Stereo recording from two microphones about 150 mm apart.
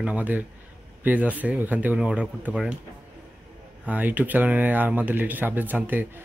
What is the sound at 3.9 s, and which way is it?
Speech, 10° right (ahead or behind).